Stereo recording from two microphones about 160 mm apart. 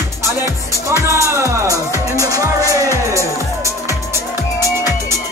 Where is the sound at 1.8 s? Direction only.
15° left (ahead or behind).